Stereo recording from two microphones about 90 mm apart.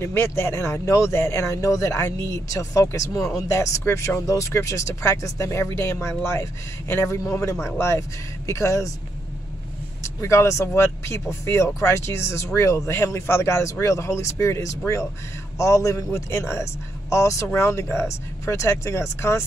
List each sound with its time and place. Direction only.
0.0 s speech: 30° left (ahead or behind)
10.2 s speech: 35° left (ahead or behind)